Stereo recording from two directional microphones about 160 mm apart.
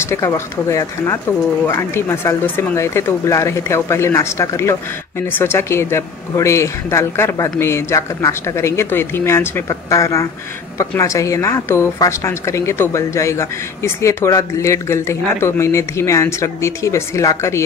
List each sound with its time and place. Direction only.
0.0 s speech: 15° left (ahead or behind)